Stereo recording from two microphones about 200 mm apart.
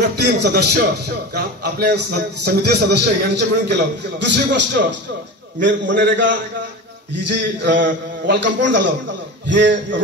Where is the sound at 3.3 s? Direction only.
60° right (ahead or behind).